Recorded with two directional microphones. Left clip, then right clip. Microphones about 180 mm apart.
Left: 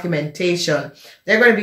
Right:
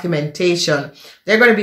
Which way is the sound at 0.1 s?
30° right (ahead or behind).